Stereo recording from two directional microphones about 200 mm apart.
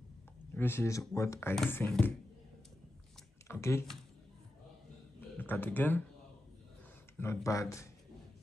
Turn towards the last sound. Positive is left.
turn(degrees=15)  # may be behind; listen again after turning